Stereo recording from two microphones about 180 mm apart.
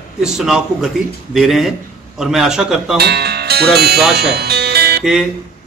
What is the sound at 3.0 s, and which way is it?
Speech, 65° right (ahead or behind).